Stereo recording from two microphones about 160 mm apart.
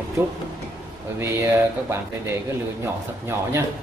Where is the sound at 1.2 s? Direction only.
15° right (ahead or behind).